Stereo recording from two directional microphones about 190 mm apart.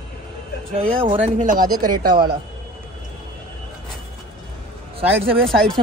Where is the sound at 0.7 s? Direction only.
30° right (ahead or behind).